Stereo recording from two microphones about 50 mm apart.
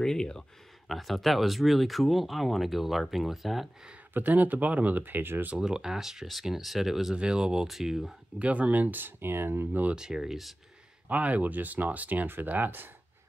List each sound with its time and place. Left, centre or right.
0.0 s speech: centre
0.8 s speech: centre
4.1 s speech: right
5.6 s speech: centre
8.4 s speech: right
9.9 s speech: centre
11.1 s speech: right